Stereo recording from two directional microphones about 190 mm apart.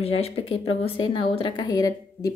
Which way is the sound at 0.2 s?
30° left (ahead or behind).